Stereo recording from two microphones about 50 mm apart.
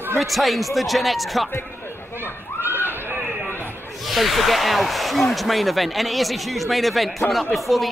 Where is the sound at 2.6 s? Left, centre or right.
Right.